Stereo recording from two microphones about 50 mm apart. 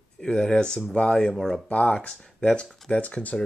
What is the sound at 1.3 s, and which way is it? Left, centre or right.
Speech, centre.